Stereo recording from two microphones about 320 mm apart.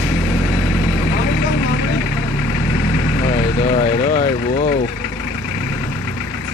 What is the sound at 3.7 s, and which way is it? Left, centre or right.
Vehicle, left.